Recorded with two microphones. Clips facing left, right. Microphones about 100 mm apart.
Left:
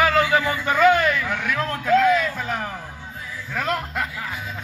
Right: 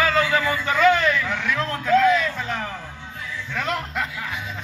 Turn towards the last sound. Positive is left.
turn(degrees=5)  # may be behind; listen again after turning